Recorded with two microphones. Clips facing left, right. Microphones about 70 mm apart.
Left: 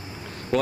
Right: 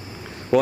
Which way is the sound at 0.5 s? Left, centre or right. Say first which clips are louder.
Right 5 dB; centre.